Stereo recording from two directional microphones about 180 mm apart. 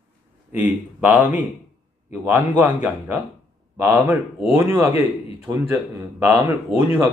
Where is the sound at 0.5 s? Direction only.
10° right (ahead or behind).